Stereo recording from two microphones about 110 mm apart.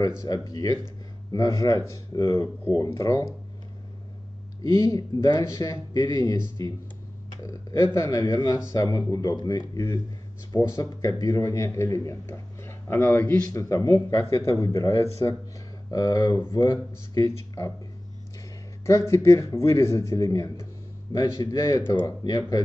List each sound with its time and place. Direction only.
0.2 s speech: 30° left (ahead or behind)
4.6 s speech: 30° left (ahead or behind)
13.5 s speech: 30° left (ahead or behind)
18.9 s speech: 25° left (ahead or behind)